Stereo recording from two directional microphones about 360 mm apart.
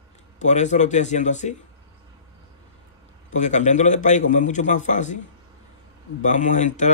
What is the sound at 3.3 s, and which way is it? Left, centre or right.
Speech, centre.